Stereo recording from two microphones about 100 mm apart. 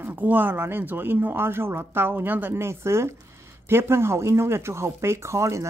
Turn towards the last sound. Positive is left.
turn(degrees=-30)  # may be behind; listen again after turning